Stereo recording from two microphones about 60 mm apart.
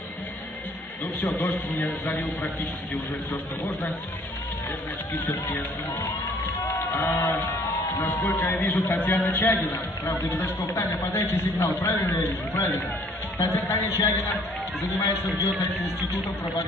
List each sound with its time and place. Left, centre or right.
1.2 s a man's voice: left
6.6 s a sound: left
7.9 s a man's voice: left
13.4 s a man's voice: left